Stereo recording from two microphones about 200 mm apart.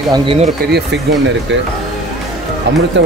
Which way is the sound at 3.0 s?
60° right (ahead or behind).